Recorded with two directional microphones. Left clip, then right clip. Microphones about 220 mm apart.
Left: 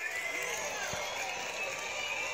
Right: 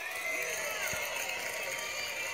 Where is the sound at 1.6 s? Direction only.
90° right.